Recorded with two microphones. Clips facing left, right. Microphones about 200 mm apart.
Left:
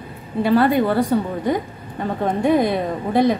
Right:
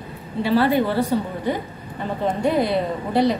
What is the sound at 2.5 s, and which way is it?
Speech, 50° left (ahead or behind).